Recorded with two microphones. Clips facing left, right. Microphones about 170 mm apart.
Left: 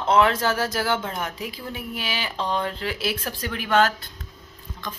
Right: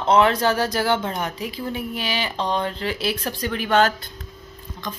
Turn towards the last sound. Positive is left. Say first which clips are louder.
# right 2 dB
turn(degrees=0)  # may be behind; listen again after turning